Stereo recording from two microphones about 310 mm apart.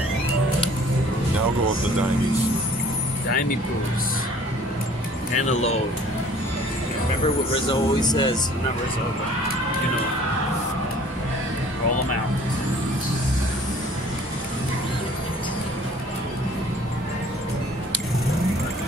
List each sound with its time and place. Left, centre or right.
5.3 s speech: left
7.5 s speech: centre